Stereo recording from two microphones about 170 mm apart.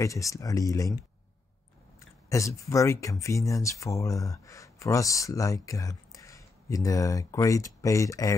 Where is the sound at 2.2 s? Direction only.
20° left (ahead or behind).